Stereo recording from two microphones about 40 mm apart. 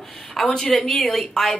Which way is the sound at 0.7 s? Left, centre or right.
Centre.